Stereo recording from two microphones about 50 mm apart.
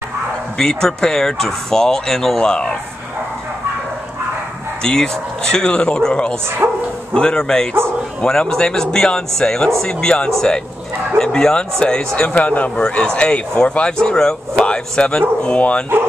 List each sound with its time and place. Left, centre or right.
0.6 s speech: centre
4.8 s speech: centre
6.6 s speech: right
7.2 s speech: centre